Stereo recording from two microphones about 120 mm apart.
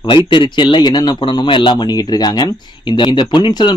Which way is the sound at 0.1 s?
45° left (ahead or behind).